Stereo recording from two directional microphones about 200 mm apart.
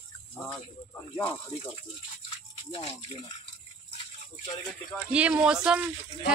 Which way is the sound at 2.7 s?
25° left (ahead or behind).